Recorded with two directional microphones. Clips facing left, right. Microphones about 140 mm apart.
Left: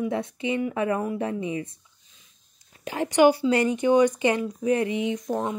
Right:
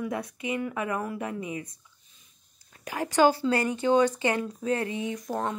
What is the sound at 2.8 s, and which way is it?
Speech, 25° left (ahead or behind).